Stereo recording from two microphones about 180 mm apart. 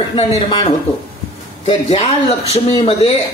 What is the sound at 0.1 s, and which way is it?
Speech, 30° left (ahead or behind).